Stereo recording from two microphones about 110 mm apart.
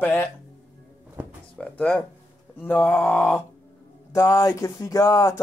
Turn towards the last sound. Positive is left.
turn(degrees=30)  # may be behind; listen again after turning